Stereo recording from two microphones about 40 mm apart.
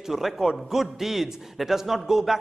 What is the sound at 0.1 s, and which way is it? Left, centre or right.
A man's voice, centre.